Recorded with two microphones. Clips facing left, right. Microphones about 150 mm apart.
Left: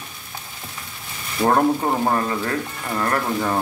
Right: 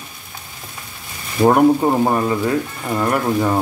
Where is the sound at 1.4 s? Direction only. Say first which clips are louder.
Right 5 dB; 15° right (ahead or behind).